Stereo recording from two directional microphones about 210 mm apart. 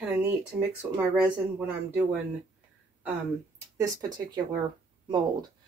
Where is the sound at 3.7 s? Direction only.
15° right (ahead or behind).